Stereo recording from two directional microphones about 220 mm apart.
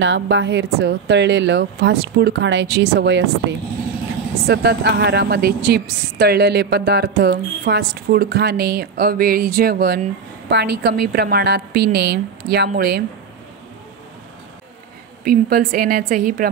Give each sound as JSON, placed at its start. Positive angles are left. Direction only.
{"t": 0.0, "sound": "a woman's voice", "side_deg": -55}
{"t": 15.2, "sound": "a woman's voice", "side_deg": -40}